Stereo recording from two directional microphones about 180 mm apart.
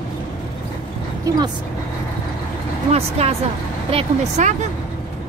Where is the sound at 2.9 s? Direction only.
35° right (ahead or behind).